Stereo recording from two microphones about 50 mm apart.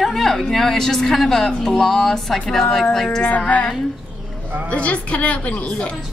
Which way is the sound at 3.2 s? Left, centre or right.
Left.